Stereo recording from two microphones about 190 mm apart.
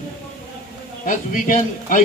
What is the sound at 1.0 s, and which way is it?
Speech, 45° left (ahead or behind).